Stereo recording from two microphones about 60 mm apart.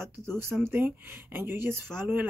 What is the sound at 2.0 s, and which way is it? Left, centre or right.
Speech, right.